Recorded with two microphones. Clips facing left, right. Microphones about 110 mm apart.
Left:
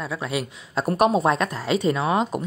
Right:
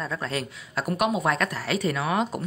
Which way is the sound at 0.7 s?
30° left (ahead or behind).